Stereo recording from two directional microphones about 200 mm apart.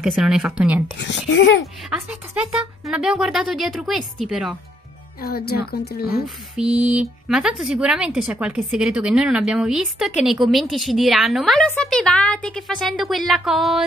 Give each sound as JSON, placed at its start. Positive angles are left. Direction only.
{"t": 0.0, "sound": "speech", "side_deg": 0}
{"t": 0.9, "sound": "speech", "side_deg": 65}
{"t": 1.9, "sound": "speech", "side_deg": -5}
{"t": 5.2, "sound": "speech", "side_deg": 50}
{"t": 6.2, "sound": "speech", "side_deg": -5}